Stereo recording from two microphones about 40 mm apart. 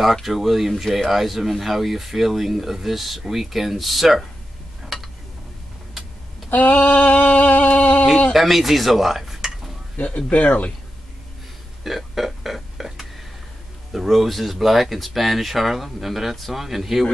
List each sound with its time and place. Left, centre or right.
0.0 s speech: centre
4.8 s a sound: centre
6.5 s male singing: left
8.3 s speech: centre
10.0 s male singing: left
11.8 s burping: centre
13.9 s speech: centre